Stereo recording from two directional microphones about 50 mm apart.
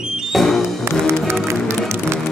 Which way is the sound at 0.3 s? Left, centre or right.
Centre.